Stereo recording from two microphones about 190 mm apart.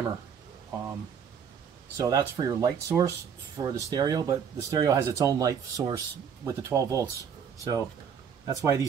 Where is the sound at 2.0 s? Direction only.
15° right (ahead or behind).